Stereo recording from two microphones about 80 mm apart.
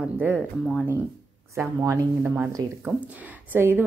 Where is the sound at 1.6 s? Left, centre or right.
Right.